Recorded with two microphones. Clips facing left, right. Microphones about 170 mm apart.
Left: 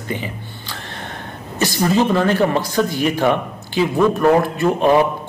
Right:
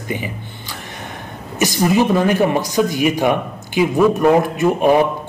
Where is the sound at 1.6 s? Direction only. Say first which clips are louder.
Right 1 dB; 15° right (ahead or behind).